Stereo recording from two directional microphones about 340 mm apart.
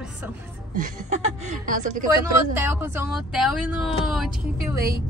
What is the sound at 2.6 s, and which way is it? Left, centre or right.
Speech, centre.